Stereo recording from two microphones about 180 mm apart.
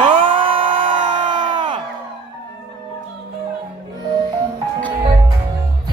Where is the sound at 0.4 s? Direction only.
30° right (ahead or behind).